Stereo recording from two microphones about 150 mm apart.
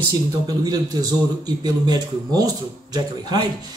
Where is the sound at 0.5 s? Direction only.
25° right (ahead or behind).